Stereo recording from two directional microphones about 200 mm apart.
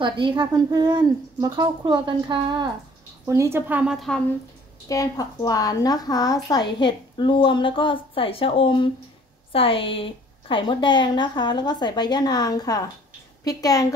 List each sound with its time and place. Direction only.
0.0 s speech: 25° right (ahead or behind); by 4.2 s centre (ahead or behind)
4.8 s a woman's voice: 15° left (ahead or behind)